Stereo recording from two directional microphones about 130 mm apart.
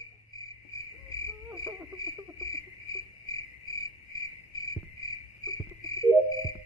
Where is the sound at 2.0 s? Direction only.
30° left (ahead or behind).